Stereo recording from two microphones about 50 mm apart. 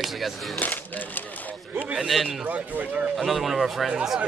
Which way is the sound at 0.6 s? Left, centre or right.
Left.